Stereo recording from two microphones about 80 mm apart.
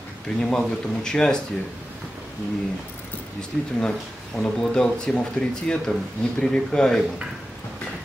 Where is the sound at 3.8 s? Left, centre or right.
Centre.